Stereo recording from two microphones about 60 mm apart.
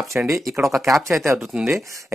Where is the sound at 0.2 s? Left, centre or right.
Right.